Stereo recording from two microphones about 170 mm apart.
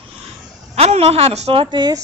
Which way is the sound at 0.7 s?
40° right (ahead or behind).